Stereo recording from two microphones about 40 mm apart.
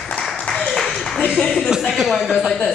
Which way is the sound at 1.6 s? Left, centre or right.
Centre.